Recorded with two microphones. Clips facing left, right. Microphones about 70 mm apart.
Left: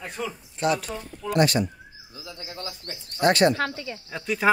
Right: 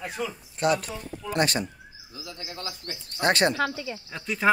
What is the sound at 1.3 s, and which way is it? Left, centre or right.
Speech, right.